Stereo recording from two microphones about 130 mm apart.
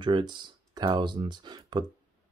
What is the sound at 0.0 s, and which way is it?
Speech, 35° right (ahead or behind).